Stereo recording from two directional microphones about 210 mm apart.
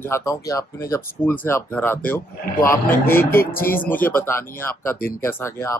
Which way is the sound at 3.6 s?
45° left (ahead or behind).